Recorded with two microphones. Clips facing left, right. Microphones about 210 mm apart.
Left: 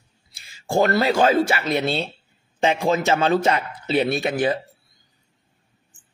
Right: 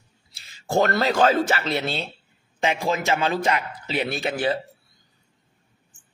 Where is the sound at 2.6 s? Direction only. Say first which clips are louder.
Left 4 dB; 30° left (ahead or behind).